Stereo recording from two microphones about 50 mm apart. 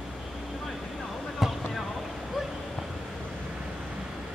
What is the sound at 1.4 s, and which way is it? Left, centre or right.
Basketball bounce, centre.